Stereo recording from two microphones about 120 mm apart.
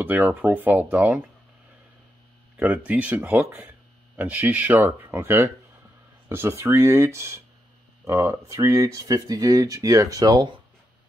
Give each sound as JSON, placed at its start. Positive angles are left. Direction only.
{"t": 0.0, "sound": "speech", "side_deg": -15}
{"t": 2.5, "sound": "speech", "side_deg": -10}